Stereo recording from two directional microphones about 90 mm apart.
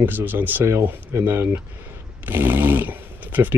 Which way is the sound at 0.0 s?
20° right (ahead or behind).